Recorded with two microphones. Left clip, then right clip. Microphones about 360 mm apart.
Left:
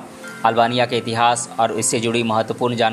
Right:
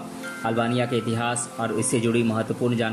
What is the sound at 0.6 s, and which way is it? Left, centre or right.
Speech, centre.